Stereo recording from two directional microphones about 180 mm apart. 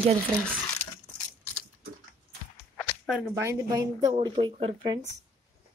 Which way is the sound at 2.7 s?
Centre (ahead or behind).